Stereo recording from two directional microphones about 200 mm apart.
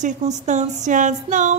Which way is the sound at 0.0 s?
35° right (ahead or behind).